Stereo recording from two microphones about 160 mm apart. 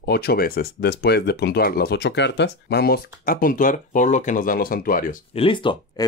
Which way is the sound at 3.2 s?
60° left (ahead or behind).